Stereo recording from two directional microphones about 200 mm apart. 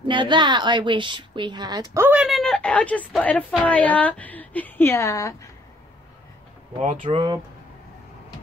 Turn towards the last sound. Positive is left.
turn(degrees=-30)  # may be behind; listen again after turning